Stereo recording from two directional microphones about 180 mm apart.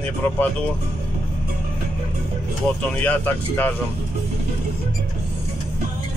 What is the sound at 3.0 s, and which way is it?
Speech, 10° left (ahead or behind).